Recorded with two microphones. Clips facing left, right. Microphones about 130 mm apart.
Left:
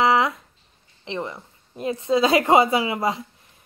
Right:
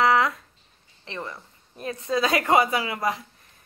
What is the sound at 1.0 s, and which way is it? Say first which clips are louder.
A woman's voice: left 5 dB; 20° left (ahead or behind).